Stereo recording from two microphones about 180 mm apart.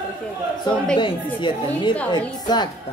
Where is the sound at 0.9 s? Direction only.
25° left (ahead or behind).